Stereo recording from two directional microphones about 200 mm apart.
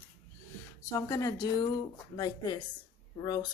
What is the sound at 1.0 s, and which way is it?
Speech, 15° left (ahead or behind).